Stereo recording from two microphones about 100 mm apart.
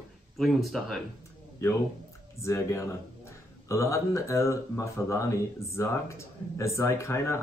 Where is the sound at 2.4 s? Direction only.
30° left (ahead or behind).